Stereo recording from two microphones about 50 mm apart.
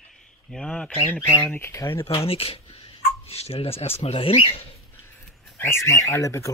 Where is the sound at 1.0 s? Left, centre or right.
Left.